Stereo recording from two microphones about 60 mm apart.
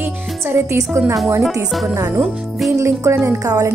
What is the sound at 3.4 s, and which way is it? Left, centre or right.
Speech, right.